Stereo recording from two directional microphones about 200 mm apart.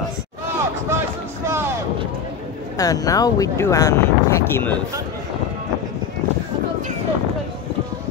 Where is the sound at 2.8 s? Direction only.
15° left (ahead or behind).